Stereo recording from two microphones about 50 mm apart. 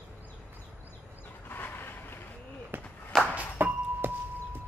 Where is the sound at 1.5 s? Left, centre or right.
Left.